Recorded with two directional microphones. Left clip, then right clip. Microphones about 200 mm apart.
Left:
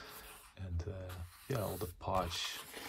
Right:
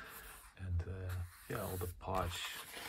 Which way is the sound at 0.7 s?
30° left (ahead or behind).